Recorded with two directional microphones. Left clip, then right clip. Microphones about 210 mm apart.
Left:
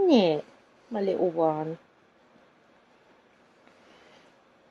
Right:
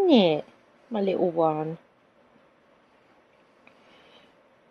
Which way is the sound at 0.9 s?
30° right (ahead or behind).